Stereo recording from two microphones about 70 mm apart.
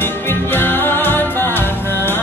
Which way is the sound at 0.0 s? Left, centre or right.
Left.